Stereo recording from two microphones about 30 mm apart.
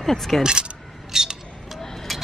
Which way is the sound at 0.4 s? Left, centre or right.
Right.